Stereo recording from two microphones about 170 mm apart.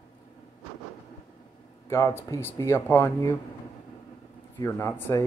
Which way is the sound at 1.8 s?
15° left (ahead or behind).